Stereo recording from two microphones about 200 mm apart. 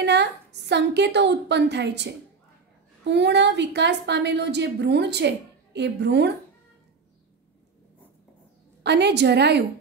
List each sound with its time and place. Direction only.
0.0 s a woman's voice: 60° right (ahead or behind)
8.8 s a woman's voice: 55° right (ahead or behind)